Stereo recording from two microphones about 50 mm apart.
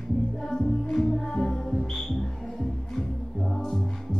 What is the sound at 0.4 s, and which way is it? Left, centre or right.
Music, centre.